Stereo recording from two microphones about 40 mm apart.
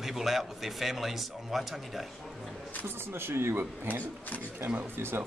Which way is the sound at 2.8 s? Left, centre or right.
Right.